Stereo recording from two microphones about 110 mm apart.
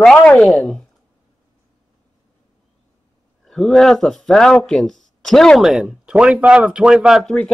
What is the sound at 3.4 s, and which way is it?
Speech, 5° left (ahead or behind).